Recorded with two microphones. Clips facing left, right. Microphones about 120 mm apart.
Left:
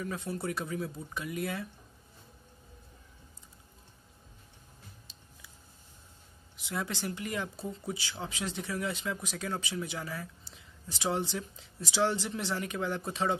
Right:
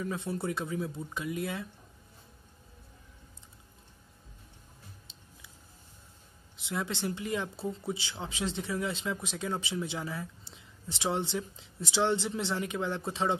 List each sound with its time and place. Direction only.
0.0 s speech: 25° right (ahead or behind)
6.5 s speech: 20° right (ahead or behind)